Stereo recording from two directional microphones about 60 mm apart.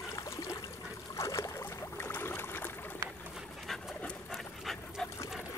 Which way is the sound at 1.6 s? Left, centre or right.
Left.